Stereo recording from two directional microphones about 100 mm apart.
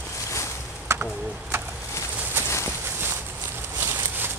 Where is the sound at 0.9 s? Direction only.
25° right (ahead or behind).